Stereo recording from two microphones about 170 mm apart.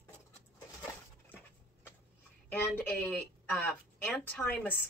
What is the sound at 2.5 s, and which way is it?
Speech, 10° left (ahead or behind).